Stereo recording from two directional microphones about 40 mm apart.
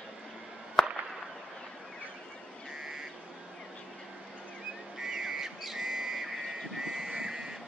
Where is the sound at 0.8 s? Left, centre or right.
Centre.